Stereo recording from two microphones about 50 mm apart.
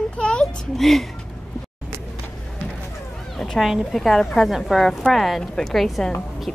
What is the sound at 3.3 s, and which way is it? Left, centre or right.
Cat, centre.